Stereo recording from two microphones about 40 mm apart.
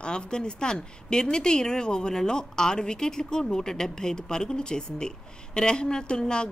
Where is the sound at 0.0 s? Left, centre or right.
Left.